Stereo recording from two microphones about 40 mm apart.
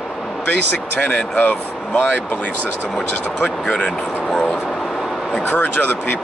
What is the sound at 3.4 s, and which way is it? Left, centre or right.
Speech, left.